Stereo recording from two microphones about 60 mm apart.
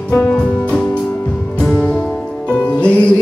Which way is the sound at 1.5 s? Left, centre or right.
Centre.